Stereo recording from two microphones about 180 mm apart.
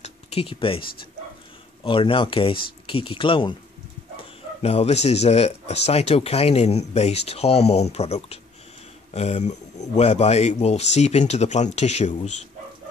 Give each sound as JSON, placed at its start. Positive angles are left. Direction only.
{"t": 0.0, "sound": "speech", "side_deg": 35}